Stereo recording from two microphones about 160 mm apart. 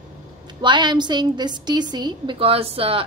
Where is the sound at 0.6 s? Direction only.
30° right (ahead or behind).